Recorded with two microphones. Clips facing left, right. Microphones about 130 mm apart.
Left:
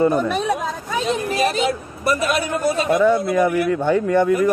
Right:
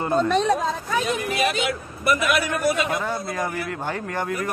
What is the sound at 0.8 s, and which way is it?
A man's voice, 20° left (ahead or behind).